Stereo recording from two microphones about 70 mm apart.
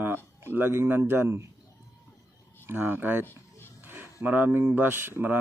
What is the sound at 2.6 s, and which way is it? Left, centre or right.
Speech, right.